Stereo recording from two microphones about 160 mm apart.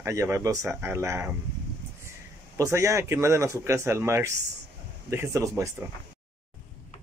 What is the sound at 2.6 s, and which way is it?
Speech, 20° right (ahead or behind).